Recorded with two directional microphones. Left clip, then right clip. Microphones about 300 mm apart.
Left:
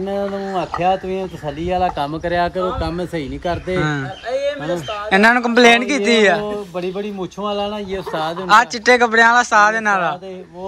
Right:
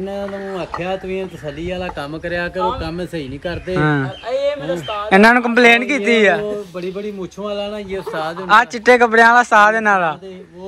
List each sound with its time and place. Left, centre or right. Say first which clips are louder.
0.1 s speech: left 3 dB; left
2.6 s speech: right 1 dB; centre
3.7 s speech: right 3 dB; centre
6.8 s speech: left 1 dB; left
8.5 s speech: right 1 dB; centre